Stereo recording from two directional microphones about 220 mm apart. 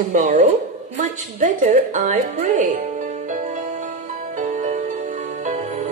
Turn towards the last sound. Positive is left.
turn(degrees=-30)  # may be behind; listen again after turning